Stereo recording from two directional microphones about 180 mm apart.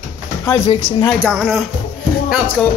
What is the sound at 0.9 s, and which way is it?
Speech, 15° left (ahead or behind).